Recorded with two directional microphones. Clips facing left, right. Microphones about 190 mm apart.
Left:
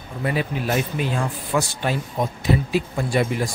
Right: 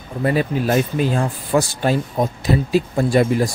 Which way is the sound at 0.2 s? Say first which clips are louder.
Right 6 dB; 45° right (ahead or behind).